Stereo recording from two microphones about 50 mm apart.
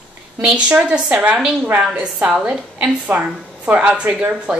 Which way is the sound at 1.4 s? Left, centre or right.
Centre.